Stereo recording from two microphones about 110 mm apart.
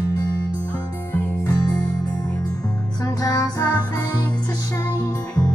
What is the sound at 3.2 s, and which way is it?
Music, 35° left (ahead or behind).